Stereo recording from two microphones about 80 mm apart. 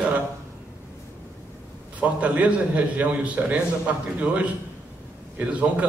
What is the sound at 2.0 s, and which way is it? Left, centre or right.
A man's voice, centre.